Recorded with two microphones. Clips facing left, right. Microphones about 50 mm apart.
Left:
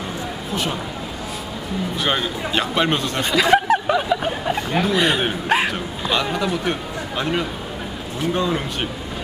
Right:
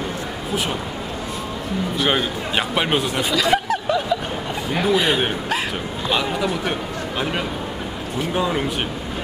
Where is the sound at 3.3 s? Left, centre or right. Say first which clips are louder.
Left 5 dB; centre.